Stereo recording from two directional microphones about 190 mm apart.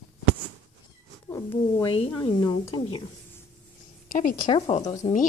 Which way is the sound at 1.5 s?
25° left (ahead or behind).